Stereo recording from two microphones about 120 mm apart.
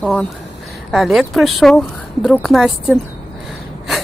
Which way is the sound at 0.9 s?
Centre (ahead or behind).